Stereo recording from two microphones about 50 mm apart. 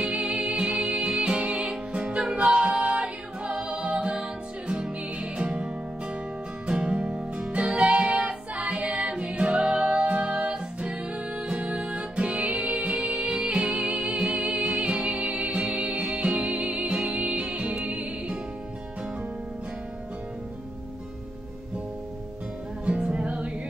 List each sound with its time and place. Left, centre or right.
0.0 s music: centre
22.8 s music: right